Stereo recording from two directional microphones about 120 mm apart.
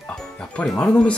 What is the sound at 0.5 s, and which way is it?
Speech, 10° left (ahead or behind).